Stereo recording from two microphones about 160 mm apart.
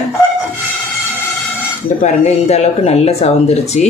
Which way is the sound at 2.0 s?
45° left (ahead or behind).